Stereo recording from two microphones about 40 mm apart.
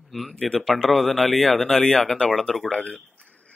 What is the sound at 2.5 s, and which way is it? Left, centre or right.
Speech, centre.